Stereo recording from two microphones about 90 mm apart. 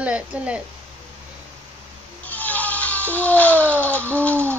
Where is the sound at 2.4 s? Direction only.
15° left (ahead or behind).